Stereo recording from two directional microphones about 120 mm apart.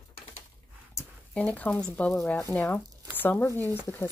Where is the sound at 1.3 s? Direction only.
10° left (ahead or behind).